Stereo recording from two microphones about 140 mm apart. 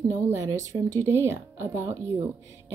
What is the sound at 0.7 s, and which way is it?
Speech, 20° right (ahead or behind).